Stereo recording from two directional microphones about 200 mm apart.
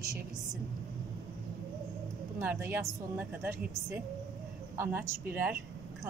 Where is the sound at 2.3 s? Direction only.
10° right (ahead or behind).